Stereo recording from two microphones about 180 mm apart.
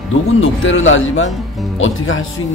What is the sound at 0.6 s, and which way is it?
A man's voice, 90° left.